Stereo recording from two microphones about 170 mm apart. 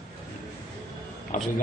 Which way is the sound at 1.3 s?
50° left (ahead or behind).